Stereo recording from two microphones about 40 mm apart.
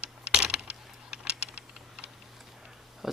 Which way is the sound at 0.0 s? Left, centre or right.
Right.